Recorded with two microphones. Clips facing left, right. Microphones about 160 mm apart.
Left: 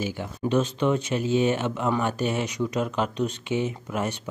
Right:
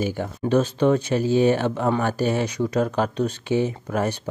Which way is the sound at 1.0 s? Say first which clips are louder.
Right 4 dB; 35° right (ahead or behind).